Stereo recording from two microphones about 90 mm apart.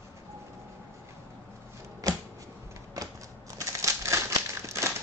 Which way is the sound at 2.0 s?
40° right (ahead or behind).